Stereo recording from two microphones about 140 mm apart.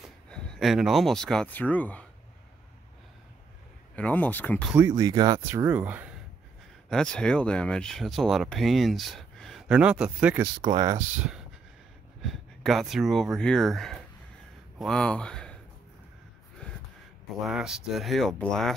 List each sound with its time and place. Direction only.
0.3 s speech: 5° left (ahead or behind)
3.9 s speech: 10° left (ahead or behind)
4.7 s speech: 20° right (ahead or behind)
5.7 s speech: 10° right (ahead or behind)
6.9 s speech: 5° left (ahead or behind)
10.4 s speech: 30° right (ahead or behind)
11.0 s speech: 5° right (ahead or behind)
16.6 s gasp: 10° left (ahead or behind)
17.5 s speech: 5° right (ahead or behind)